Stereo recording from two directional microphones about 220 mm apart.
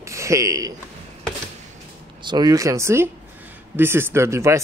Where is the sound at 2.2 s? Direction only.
20° right (ahead or behind).